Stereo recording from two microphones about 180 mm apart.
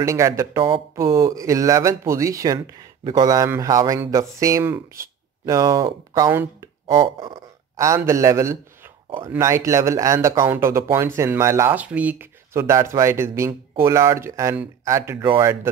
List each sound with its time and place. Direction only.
0.0 s speech: 15° right (ahead or behind)